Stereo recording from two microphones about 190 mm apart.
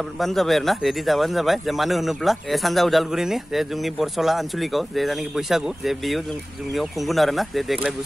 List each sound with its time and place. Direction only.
0.2 s speech: centre (ahead or behind)